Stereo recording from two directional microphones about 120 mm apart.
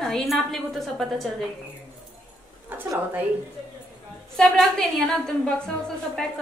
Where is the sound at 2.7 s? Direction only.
15° right (ahead or behind).